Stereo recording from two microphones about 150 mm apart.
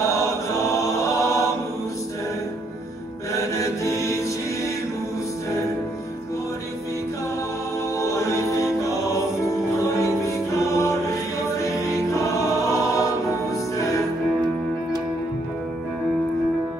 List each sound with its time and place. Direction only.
0.0 s choir: 20° left (ahead or behind)
3.3 s chant: 20° left (ahead or behind)
8.0 s music: 20° left (ahead or behind)
12.1 s choir: 20° left (ahead or behind)
13.7 s music: 20° left (ahead or behind)